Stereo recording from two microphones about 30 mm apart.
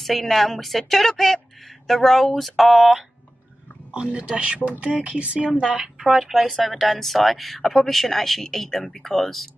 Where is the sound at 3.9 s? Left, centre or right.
Right.